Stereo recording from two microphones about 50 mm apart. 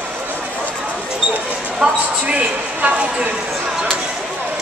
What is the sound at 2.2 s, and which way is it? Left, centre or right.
A man's voice, right.